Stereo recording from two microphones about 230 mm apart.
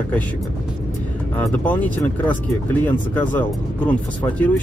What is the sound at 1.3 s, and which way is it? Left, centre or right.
Speech, centre.